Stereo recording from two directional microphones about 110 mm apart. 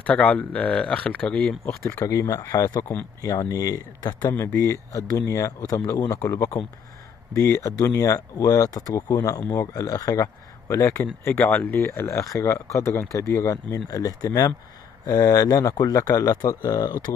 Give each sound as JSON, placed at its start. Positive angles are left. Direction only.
{"t": 0.0, "sound": "speech", "side_deg": 15}
{"t": 1.6, "sound": "speech", "side_deg": 25}
{"t": 4.4, "sound": "speech", "side_deg": 30}
{"t": 9.8, "sound": "speech", "side_deg": 35}